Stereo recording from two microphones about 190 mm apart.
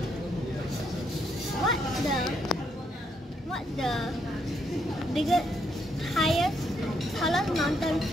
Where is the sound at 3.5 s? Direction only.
Centre (ahead or behind).